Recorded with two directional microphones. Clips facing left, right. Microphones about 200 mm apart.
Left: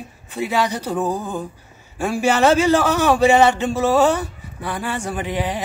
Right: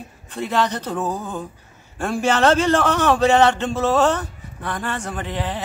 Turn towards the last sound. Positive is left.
turn(degrees=15)  # may be behind; listen again after turning